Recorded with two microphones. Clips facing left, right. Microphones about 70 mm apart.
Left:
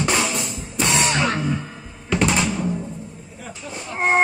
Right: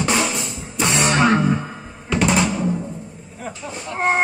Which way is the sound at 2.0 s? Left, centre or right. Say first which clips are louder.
Right 2 dB; centre.